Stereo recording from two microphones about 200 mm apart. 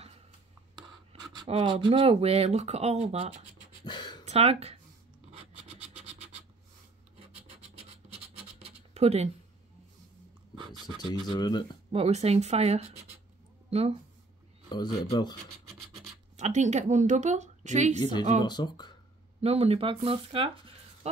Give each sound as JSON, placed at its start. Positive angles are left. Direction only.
{"t": 0.7, "sound": "speech", "side_deg": -20}
{"t": 3.8, "sound": "a sound", "side_deg": 20}
{"t": 4.3, "sound": "speech", "side_deg": -30}
{"t": 5.3, "sound": "rub", "side_deg": -30}
{"t": 7.2, "sound": "scratch", "side_deg": -30}
{"t": 10.5, "sound": "a sound", "side_deg": -25}
{"t": 11.2, "sound": "speech", "side_deg": 20}
{"t": 11.9, "sound": "a woman's voice", "side_deg": -30}
{"t": 14.7, "sound": "speech", "side_deg": 20}
{"t": 16.3, "sound": "a woman's voice", "side_deg": -35}
{"t": 17.9, "sound": "speech", "side_deg": 20}
{"t": 19.4, "sound": "speech", "side_deg": -30}